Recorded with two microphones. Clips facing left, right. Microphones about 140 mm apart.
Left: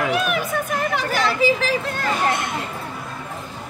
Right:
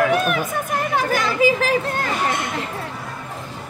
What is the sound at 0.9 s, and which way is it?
Chatter, 45° right (ahead or behind).